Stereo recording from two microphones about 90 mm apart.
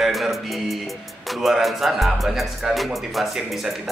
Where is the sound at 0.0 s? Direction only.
Centre (ahead or behind).